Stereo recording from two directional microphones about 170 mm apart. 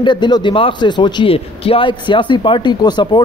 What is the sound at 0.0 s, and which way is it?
A man's voice, 25° left (ahead or behind).